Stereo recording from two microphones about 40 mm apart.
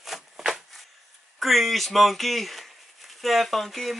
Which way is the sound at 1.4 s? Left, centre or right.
Centre.